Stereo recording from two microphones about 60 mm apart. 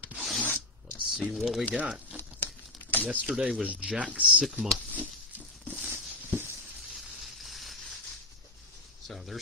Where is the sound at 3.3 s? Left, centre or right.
Centre.